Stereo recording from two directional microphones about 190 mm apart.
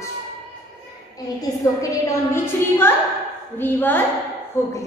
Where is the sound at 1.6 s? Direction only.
15° left (ahead or behind).